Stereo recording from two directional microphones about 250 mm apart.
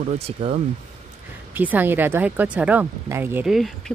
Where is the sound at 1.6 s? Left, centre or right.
Centre.